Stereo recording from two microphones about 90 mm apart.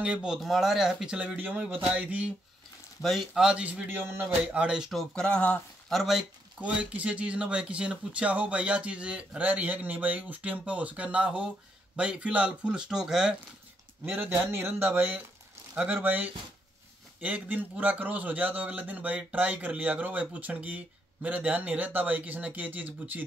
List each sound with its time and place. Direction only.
0.0 s a man's voice: 10° right (ahead or behind)
3.0 s a man's voice: centre (ahead or behind)
5.1 s speech: 10° left (ahead or behind)
5.9 s speech: centre (ahead or behind)
6.6 s a man's voice: 15° right (ahead or behind)
14.0 s a man's voice: 25° right (ahead or behind)